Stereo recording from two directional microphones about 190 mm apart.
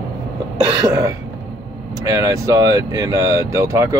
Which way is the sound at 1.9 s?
15° right (ahead or behind).